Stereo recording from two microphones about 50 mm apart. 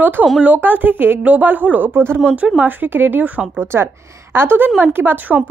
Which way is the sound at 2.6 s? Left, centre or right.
Right.